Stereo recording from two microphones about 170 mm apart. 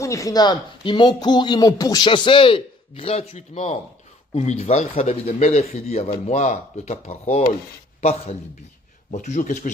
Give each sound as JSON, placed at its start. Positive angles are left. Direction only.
{"t": 0.0, "sound": "a man's voice", "side_deg": 20}